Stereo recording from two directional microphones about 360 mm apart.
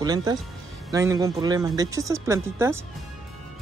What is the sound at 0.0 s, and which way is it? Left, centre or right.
Speech, centre.